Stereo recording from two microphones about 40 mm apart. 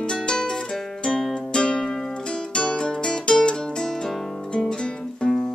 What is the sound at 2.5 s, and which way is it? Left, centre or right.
Music, left.